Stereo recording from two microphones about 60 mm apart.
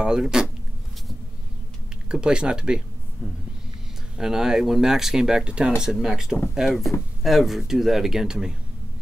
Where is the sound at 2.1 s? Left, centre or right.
Centre.